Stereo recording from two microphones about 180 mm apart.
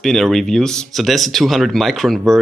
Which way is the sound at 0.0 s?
Centre (ahead or behind).